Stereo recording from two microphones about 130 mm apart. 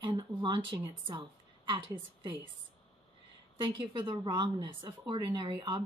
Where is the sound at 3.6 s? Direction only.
40° right (ahead or behind).